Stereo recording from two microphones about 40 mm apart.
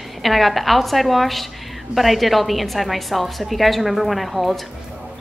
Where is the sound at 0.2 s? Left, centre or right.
Centre.